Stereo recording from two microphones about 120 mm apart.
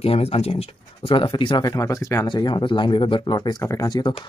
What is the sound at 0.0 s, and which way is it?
Speech, 55° left (ahead or behind).